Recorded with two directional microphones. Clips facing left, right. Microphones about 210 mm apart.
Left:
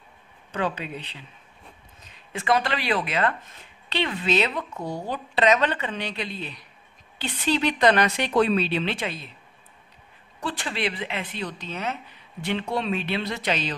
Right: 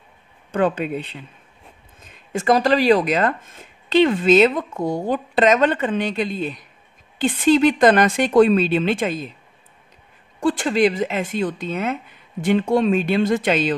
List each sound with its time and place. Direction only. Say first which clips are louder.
0.5 s speech: right 8 dB; 50° right (ahead or behind)
10.4 s speech: right 11 dB; 45° right (ahead or behind)